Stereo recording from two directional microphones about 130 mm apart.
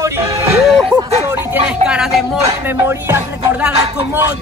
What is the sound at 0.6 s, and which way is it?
Music, 5° right (ahead or behind).